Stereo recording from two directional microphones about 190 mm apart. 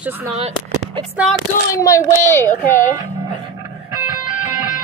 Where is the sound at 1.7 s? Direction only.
15° left (ahead or behind).